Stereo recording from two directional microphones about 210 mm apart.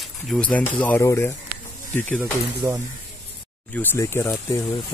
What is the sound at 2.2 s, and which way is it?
Speech, 15° right (ahead or behind).